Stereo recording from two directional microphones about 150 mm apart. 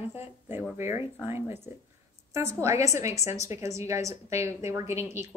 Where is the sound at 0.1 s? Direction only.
15° right (ahead or behind).